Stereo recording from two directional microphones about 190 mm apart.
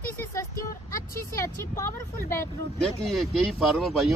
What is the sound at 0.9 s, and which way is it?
Vehicle, 15° left (ahead or behind).